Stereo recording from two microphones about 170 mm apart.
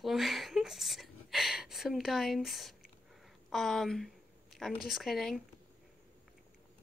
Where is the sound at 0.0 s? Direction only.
Centre (ahead or behind).